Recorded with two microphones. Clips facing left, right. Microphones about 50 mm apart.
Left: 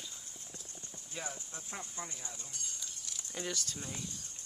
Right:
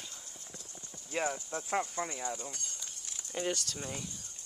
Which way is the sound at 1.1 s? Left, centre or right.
Right.